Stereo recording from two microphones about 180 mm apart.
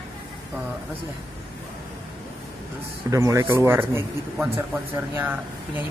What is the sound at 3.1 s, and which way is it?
Speech, 15° right (ahead or behind).